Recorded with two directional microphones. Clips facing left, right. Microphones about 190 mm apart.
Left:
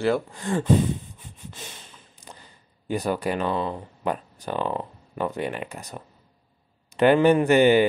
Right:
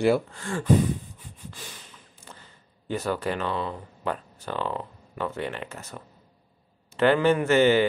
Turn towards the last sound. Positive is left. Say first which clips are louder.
# left 3 dB
turn(degrees=15)  # may be behind; listen again after turning